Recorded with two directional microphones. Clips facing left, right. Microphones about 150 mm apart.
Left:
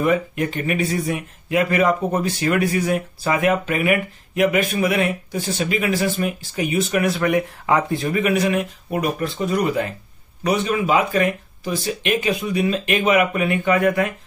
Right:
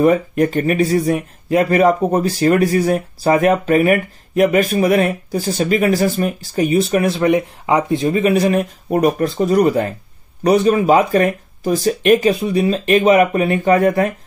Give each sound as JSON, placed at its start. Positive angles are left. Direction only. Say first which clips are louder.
{"t": 0.0, "sound": "speech", "louder": "right 6 dB", "side_deg": -40}